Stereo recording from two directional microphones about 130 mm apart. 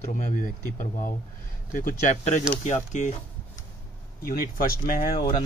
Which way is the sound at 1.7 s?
80° left.